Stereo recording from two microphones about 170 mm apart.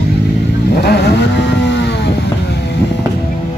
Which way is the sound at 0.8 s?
70° left (ahead or behind).